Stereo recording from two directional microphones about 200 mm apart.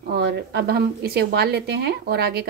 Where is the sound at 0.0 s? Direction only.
55° right (ahead or behind).